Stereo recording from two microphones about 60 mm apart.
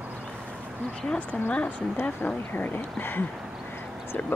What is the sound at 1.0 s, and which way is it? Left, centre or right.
Speech, centre.